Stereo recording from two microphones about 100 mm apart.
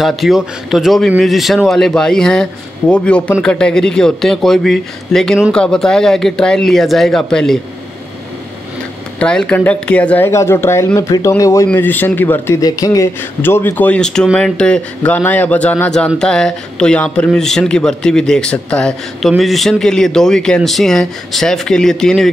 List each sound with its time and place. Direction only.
0.0 s speech: centre (ahead or behind)
9.2 s speech: 10° left (ahead or behind)
10.3 s speech: 25° left (ahead or behind)
11.8 s speech: 20° left (ahead or behind)
12.5 s speech: 35° left (ahead or behind)
13.4 s speech: 25° left (ahead or behind); by 22.3 s 5° left (ahead or behind)